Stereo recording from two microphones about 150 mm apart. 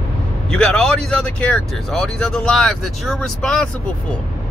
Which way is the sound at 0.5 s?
5° left (ahead or behind).